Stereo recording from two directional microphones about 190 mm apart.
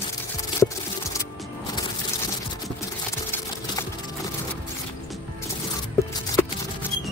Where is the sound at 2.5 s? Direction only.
15° left (ahead or behind).